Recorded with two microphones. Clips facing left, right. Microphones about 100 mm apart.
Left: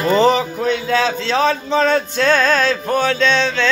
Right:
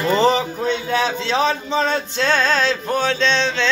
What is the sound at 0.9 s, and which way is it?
Music, 20° right (ahead or behind).